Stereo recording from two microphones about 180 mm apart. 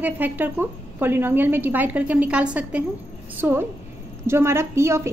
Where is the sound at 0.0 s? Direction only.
10° right (ahead or behind).